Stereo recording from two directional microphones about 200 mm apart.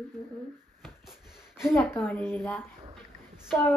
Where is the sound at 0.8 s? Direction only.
Centre (ahead or behind).